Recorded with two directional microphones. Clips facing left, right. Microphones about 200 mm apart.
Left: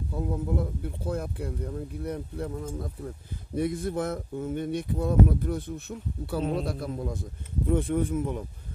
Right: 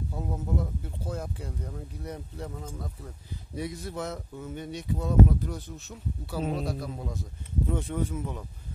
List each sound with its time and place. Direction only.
0.1 s speech: 60° left (ahead or behind)